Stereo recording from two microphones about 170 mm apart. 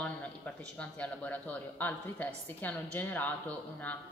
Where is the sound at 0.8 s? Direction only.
10° left (ahead or behind).